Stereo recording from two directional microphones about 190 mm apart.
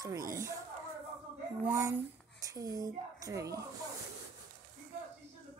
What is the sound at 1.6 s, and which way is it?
A woman's voice, 15° right (ahead or behind).